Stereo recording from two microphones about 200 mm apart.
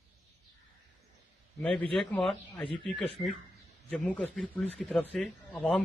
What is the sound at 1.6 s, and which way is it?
Speech, 5° left (ahead or behind).